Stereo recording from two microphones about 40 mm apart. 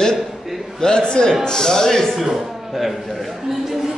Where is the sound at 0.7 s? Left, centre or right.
Centre.